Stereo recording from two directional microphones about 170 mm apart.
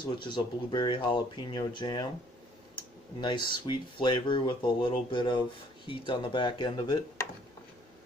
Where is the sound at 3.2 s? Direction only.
25° left (ahead or behind).